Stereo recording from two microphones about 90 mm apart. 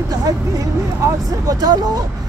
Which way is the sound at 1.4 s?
45° right (ahead or behind).